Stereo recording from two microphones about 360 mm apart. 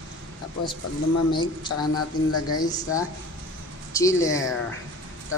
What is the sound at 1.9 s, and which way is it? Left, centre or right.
Speech, left.